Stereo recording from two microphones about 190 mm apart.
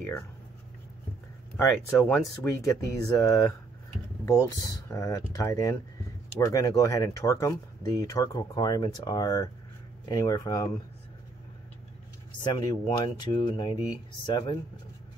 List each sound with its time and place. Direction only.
1.6 s speech: 15° left (ahead or behind)
12.4 s speech: 20° left (ahead or behind)